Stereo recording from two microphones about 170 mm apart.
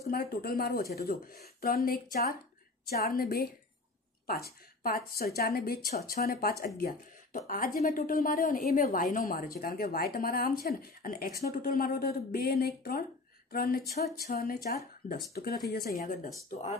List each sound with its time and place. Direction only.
0.0 s a woman's voice: 65° left (ahead or behind)
16.4 s speech: 45° left (ahead or behind)